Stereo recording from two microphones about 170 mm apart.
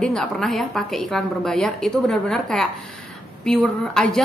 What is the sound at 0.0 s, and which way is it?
A woman's voice, 5° left (ahead or behind).